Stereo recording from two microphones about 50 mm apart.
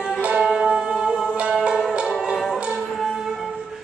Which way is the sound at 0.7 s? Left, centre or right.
Right.